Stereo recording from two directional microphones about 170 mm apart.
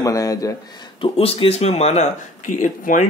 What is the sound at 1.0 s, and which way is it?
Speech, 35° left (ahead or behind).